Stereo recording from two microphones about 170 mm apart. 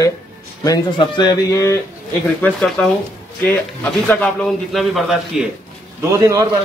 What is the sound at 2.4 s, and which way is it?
Speech, centre (ahead or behind).